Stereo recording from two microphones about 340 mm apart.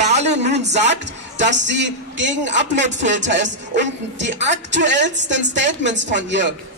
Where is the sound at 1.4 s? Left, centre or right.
Right.